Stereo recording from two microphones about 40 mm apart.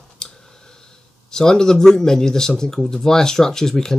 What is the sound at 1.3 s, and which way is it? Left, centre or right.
Speech, centre.